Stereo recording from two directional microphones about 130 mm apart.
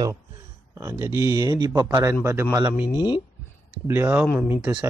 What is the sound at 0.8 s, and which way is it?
Speech, 20° right (ahead or behind).